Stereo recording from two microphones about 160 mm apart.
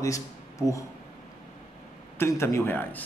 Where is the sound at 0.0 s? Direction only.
20° left (ahead or behind).